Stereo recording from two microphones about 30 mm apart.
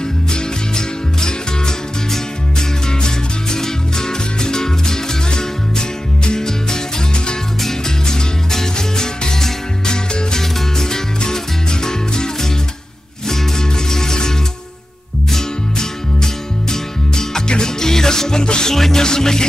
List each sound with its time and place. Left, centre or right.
0.3 s music: left
3.5 s music: centre
8.1 s music: centre
15.3 s music: centre
18.7 s music: centre